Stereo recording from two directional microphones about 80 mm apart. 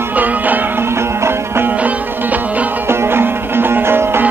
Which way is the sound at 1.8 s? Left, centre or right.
Centre.